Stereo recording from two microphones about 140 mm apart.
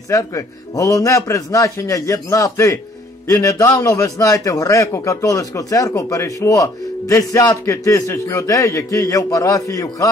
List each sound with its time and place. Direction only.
0.1 s a man's voice: 25° left (ahead or behind)